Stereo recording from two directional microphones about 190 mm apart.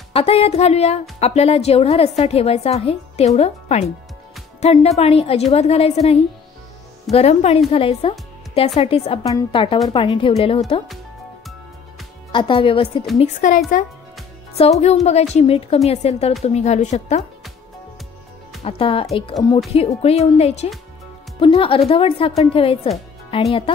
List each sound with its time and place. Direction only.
0.1 s a woman's voice: 30° left (ahead or behind)
12.3 s a woman's voice: 25° left (ahead or behind)
13.2 s a woman's voice: 40° left (ahead or behind)
14.6 s a woman's voice: 35° left (ahead or behind)
18.6 s a woman's voice: 30° left (ahead or behind)